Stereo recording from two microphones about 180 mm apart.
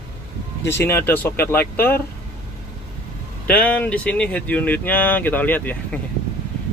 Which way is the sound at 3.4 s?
10° left (ahead or behind).